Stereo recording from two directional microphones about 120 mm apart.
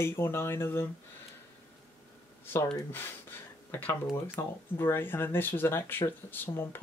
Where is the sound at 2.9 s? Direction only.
20° left (ahead or behind).